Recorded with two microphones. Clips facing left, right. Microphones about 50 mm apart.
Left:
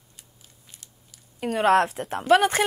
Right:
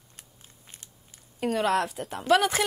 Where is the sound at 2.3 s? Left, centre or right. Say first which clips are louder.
Left 3 dB; left.